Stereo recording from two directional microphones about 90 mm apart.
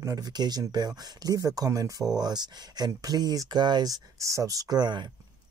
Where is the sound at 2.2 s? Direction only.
50° right (ahead or behind).